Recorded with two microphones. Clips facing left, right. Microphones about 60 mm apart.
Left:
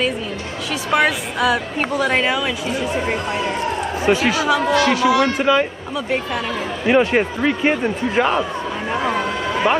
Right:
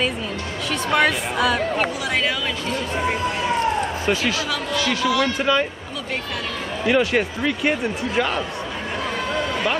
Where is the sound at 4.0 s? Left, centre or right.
Centre.